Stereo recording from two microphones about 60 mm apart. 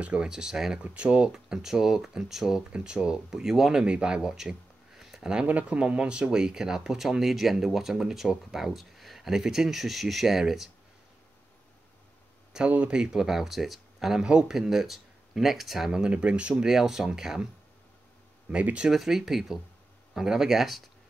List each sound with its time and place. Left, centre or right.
0.0 s speech: right
0.3 s speech: centre
0.8 s speech: centre
5.5 s speech: right; by 10.7 s centre
12.6 s speech: right
16.6 s speech: centre
18.5 s speech: centre
18.9 s speech: centre